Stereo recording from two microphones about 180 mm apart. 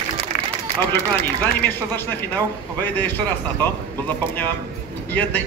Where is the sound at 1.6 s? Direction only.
10° left (ahead or behind).